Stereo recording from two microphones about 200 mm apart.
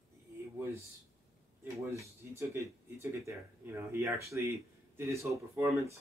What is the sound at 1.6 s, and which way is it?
Speech, 15° right (ahead or behind).